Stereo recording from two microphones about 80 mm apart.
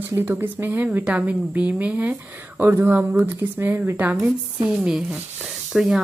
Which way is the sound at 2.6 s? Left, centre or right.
Right.